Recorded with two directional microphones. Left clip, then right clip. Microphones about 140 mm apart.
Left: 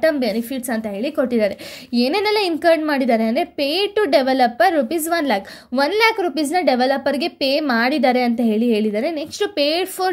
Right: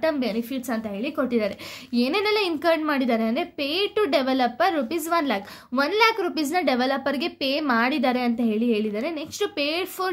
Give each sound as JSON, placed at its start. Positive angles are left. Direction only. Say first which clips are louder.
{"t": 0.0, "sound": "a woman's voice", "louder": "left 6 dB", "side_deg": 30}